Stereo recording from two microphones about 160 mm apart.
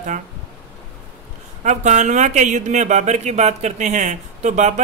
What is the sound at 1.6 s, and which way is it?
Speech, 45° right (ahead or behind).